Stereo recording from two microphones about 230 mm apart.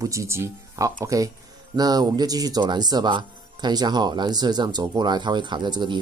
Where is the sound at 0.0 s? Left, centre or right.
Centre.